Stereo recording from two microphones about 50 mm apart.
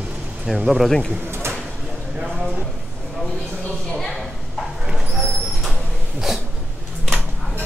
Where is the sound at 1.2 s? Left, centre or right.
Right.